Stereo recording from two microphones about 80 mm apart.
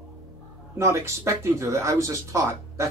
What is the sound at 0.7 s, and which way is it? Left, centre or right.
Speech, right.